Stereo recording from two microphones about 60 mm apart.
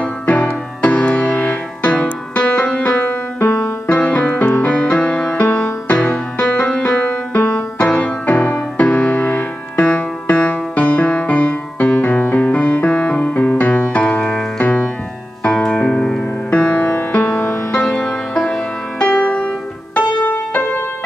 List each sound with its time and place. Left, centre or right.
0.0 s music: left